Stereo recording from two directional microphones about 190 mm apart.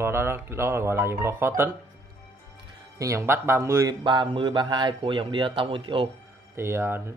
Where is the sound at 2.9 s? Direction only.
15° right (ahead or behind).